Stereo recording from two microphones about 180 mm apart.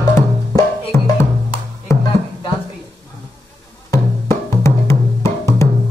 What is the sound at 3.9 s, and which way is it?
Music, 15° left (ahead or behind).